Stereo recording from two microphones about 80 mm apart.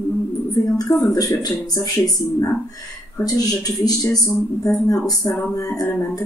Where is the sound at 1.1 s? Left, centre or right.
Left.